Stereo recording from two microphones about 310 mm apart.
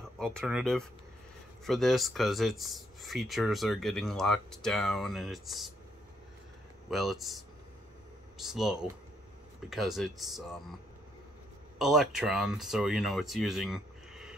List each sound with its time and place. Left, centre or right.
0.2 s speech: centre
6.9 s speech: centre
8.4 s speech: centre
11.8 s speech: centre